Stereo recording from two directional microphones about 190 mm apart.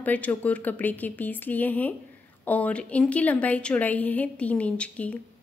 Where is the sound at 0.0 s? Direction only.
10° left (ahead or behind).